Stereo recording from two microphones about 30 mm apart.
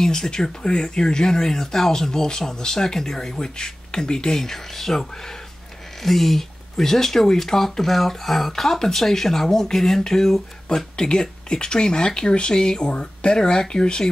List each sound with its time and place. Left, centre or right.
0.0 s speech: centre
3.3 s speech: left
4.4 s speech: centre
6.0 s speech: centre
11.0 s speech: left